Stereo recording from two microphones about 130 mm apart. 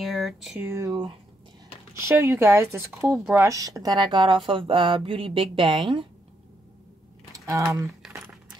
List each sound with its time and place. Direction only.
0.0 s a sound: centre (ahead or behind)
0.6 s speech: 20° right (ahead or behind)
2.0 s speech: 20° right (ahead or behind); by 6.0 s 40° right (ahead or behind)
7.3 s typing: 25° right (ahead or behind)
8.0 s keys jangling: 5° right (ahead or behind)